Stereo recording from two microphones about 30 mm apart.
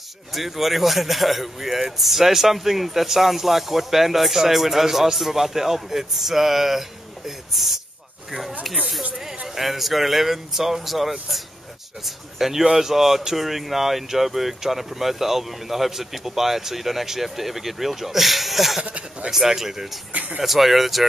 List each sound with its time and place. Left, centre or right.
0.3 s a man's voice: centre
9.6 s a man's voice: centre
20.1 s speech: right
20.4 s speech: centre